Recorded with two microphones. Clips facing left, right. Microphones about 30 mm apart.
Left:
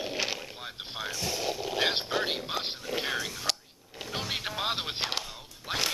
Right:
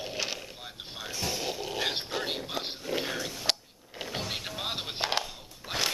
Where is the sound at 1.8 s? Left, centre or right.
Left.